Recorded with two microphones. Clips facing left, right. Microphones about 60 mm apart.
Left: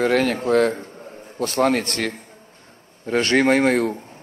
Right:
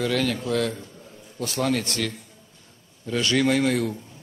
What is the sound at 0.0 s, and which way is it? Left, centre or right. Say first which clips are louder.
A man's voice: left 6 dB; left.